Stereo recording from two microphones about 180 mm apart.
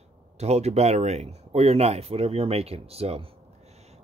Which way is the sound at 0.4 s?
35° right (ahead or behind).